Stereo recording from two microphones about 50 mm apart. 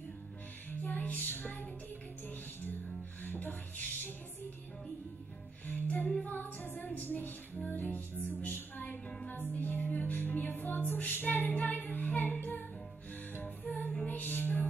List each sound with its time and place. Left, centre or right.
0.7 s music: left
5.7 s music: left
14.0 s music: left